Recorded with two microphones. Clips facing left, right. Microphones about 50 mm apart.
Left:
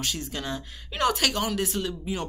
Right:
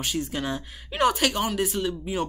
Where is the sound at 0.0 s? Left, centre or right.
Centre.